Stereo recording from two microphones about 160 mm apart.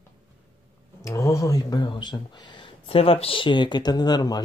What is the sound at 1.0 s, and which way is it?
Speech, 20° left (ahead or behind).